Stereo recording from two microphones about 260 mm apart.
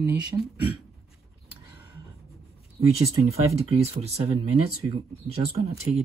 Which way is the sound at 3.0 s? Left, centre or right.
Centre.